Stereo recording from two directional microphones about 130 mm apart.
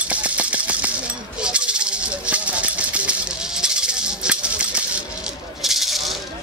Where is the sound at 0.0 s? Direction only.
10° right (ahead or behind).